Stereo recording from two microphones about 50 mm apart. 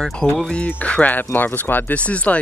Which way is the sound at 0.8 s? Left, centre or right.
Left.